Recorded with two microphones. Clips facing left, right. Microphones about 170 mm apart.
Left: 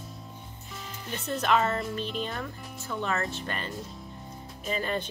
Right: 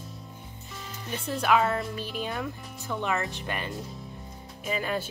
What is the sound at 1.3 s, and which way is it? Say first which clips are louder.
Speech: right 1 dB; 5° right (ahead or behind).